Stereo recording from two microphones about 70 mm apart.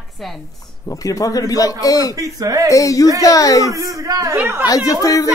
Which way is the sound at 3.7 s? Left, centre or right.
Right.